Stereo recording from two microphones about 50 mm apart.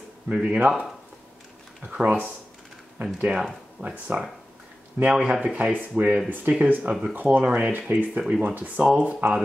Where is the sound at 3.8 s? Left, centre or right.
Right.